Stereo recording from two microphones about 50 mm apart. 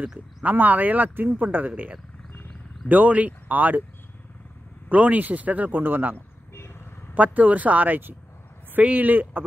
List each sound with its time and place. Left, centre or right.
0.4 s speech: right
2.9 s speech: right
4.8 s speech: right
6.5 s vehicle: left
7.2 s speech: right